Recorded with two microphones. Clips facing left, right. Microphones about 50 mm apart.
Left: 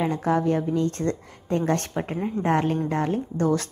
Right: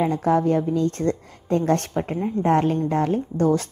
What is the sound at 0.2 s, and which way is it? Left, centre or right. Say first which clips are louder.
Speech: right 3 dB; left.